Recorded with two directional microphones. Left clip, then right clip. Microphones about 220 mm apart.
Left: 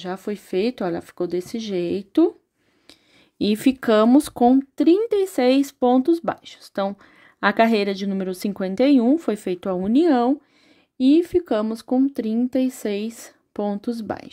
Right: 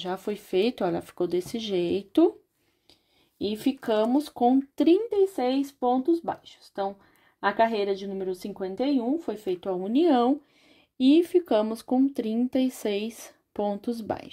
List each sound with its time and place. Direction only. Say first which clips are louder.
0.0 s speech: left 2 dB; 15° left (ahead or behind)
2.9 s speech: left 10 dB; 30° left (ahead or behind)
4.7 s speech: left 4 dB; 15° left (ahead or behind)
5.1 s a woman's voice: left 6 dB; 35° left (ahead or behind); by 14.3 s 15° left (ahead or behind)